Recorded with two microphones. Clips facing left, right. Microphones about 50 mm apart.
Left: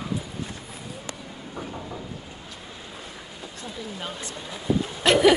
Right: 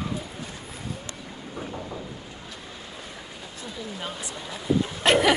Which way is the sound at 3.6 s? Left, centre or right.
Centre.